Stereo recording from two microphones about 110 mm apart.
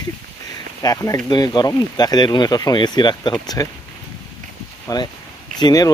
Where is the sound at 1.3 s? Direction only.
40° left (ahead or behind).